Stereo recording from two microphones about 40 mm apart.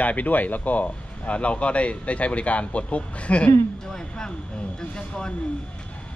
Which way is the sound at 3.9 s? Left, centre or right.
Centre.